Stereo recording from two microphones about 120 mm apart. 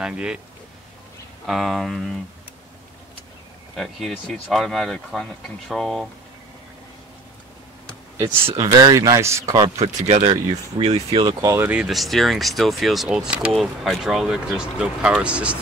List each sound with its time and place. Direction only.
0.0 s speech: 5° right (ahead or behind)
1.4 s speech: centre (ahead or behind)
3.7 s speech: centre (ahead or behind)
8.5 s speech: 30° right (ahead or behind)
10.3 s speech: 60° right (ahead or behind)
11.4 s speech: 20° right (ahead or behind)
11.7 s speech: 5° right (ahead or behind)